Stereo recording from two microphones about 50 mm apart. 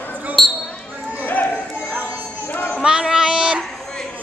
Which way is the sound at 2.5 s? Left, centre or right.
Left.